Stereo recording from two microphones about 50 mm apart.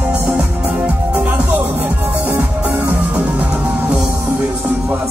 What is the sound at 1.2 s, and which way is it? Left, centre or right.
Music, right.